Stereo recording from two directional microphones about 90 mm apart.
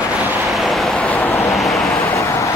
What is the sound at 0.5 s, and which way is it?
Vehicle, centre (ahead or behind).